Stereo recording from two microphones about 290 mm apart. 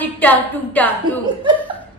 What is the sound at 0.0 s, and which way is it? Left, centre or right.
A woman's voice, centre.